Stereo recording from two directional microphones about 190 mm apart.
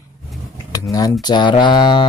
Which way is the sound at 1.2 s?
25° left (ahead or behind).